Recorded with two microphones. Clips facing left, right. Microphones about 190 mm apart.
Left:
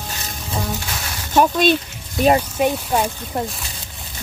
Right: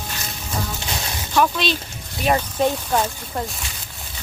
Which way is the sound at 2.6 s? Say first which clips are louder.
Left 1 dB; 10° left (ahead or behind).